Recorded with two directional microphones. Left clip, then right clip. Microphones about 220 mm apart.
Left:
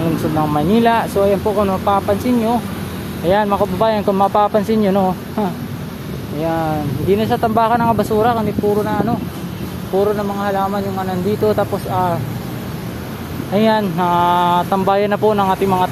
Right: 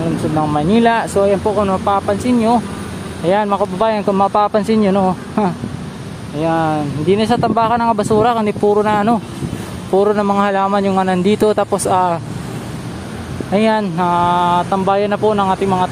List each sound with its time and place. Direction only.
0.4 s speech: 5° right (ahead or behind); by 12.2 s 25° right (ahead or behind)
13.5 s speech: 10° right (ahead or behind)